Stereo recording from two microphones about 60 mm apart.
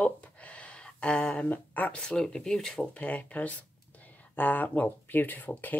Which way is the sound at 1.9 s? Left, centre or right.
Centre.